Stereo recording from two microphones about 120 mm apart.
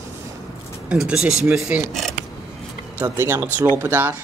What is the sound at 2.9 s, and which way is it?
Speech, 20° right (ahead or behind).